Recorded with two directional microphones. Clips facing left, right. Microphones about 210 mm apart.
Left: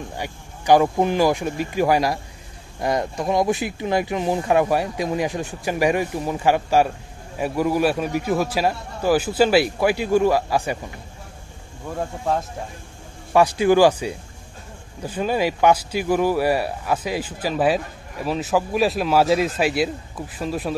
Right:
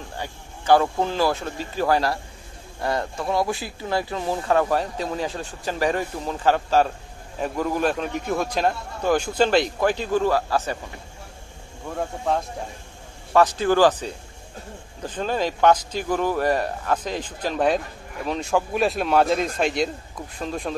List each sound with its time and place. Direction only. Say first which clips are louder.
0.2 s speech: left 2 dB; 15° left (ahead or behind)
11.9 s speech: left 1 dB; 5° left (ahead or behind)